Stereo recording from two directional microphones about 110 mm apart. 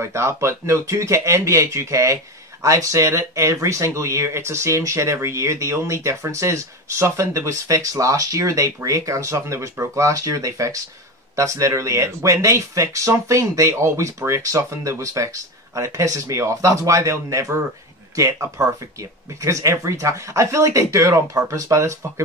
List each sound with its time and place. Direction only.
0.0 s speech: 25° right (ahead or behind)